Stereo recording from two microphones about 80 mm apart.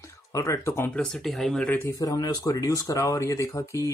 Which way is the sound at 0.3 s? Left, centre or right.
Left.